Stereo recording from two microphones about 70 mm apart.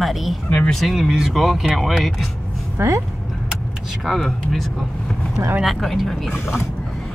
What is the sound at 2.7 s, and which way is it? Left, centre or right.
Speech, right.